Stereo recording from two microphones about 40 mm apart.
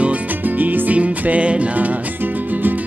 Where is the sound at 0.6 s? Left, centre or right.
Right.